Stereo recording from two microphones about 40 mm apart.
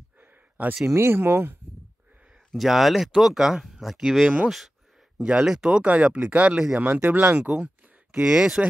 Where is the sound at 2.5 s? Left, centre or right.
Centre.